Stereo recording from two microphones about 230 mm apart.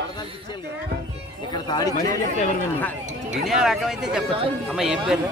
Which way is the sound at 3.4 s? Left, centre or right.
Centre.